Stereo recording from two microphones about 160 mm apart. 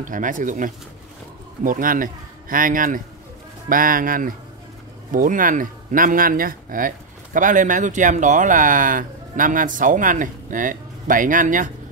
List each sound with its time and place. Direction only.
0.0 s speech: 55° right (ahead or behind)